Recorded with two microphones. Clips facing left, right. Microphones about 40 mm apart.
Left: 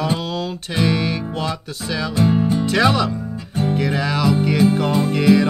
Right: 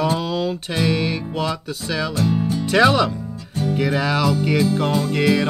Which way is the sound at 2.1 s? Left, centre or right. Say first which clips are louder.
Left 6 dB; left.